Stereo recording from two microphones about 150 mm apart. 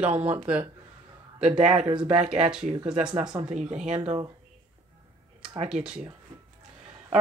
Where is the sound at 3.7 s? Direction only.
50° right (ahead or behind).